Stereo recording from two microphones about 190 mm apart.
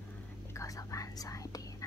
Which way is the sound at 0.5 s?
15° left (ahead or behind).